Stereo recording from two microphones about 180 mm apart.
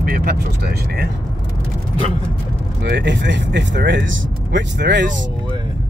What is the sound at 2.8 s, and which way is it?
Speech, 70° right (ahead or behind).